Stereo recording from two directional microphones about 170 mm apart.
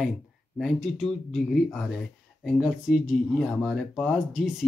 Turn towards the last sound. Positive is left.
turn(degrees=0)  # may be behind; listen again after turning